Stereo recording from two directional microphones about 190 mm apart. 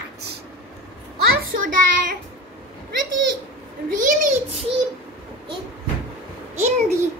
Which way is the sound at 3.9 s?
45° right (ahead or behind).